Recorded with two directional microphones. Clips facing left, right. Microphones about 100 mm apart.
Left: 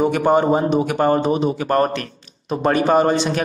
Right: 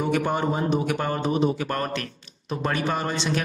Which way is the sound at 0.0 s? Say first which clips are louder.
Left 8 dB; 50° left (ahead or behind).